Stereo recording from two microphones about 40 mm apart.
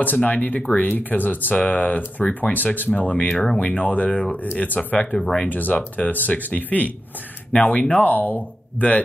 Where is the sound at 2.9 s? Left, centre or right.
Left.